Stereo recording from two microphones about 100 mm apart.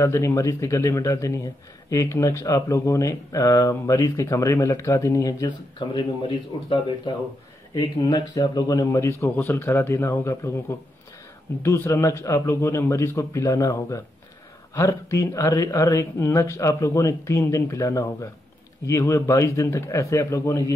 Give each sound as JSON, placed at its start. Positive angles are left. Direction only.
{"t": 0.0, "sound": "speech", "side_deg": 30}
{"t": 5.9, "sound": "a man's voice", "side_deg": 55}
{"t": 7.7, "sound": "a man's voice", "side_deg": 40}
{"t": 11.6, "sound": "a man's voice", "side_deg": 25}